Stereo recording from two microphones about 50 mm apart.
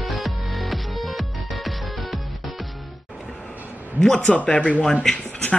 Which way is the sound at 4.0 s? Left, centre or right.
Centre.